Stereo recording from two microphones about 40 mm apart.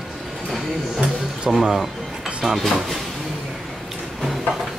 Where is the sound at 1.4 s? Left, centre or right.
Centre.